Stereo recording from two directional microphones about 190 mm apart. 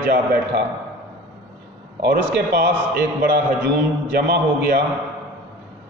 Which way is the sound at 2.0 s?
55° right (ahead or behind).